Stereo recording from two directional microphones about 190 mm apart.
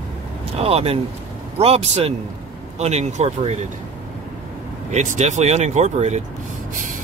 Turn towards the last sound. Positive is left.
turn(degrees=-35)  # may be behind; listen again after turning